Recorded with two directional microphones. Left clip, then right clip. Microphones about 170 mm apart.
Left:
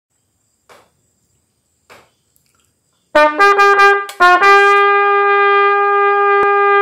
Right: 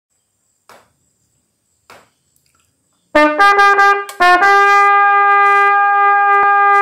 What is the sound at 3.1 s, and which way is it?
Trumpet, 10° right (ahead or behind).